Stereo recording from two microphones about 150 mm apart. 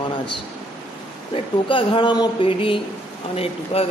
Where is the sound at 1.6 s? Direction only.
35° left (ahead or behind).